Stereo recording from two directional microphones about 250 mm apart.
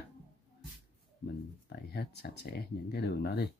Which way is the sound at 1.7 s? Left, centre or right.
Left.